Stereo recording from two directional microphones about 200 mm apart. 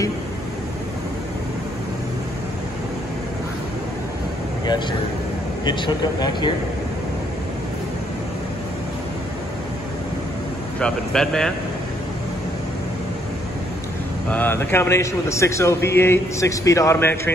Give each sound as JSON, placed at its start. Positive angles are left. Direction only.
{"t": 5.7, "sound": "speech", "side_deg": 20}
{"t": 10.8, "sound": "speech", "side_deg": 5}
{"t": 14.3, "sound": "a man's voice", "side_deg": 10}